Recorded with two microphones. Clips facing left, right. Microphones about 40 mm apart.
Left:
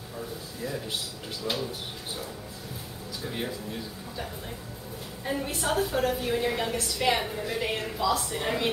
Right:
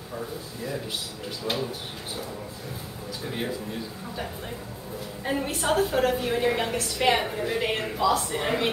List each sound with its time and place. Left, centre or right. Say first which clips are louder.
1.4 s speech: right 2 dB; centre
3.3 s speech: right 2 dB; centre
5.2 s a woman's voice: right 3 dB; centre